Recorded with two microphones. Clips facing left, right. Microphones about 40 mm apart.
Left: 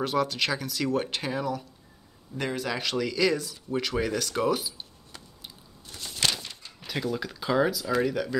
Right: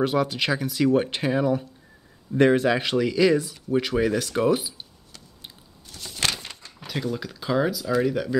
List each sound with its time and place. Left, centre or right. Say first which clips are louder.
0.0 s speech: right 3 dB; centre
2.3 s speech: right 12 dB; right
2.7 s speech: right 6 dB; right
6.9 s speech: right 1 dB; centre